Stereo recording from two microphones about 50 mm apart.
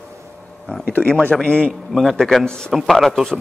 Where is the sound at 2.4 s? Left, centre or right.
Centre.